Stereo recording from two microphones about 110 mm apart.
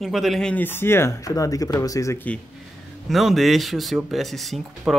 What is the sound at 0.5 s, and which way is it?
Speech, 20° left (ahead or behind).